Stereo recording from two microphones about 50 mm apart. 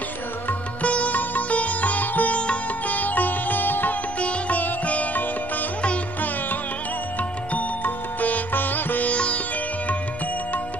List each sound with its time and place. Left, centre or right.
0.5 s sitar: left
4.2 s music: left
7.5 s music: left
9.1 s music: left